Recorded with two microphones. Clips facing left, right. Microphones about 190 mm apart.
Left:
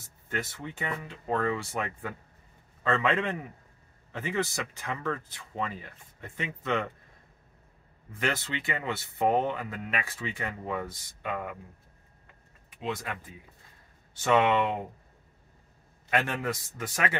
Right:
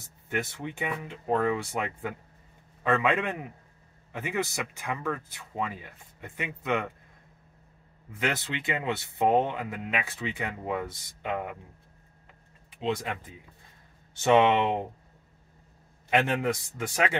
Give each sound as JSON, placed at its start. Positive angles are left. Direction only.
{"t": 0.0, "sound": "speech", "side_deg": -15}
{"t": 8.2, "sound": "speech", "side_deg": -15}
{"t": 12.8, "sound": "speech", "side_deg": -20}
{"t": 14.2, "sound": "speech", "side_deg": -20}
{"t": 16.1, "sound": "speech", "side_deg": -15}